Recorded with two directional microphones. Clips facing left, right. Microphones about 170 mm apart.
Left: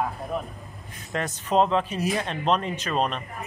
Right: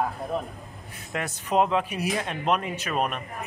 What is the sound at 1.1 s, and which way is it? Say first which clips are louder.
Speech: left 2 dB; 10° right (ahead or behind).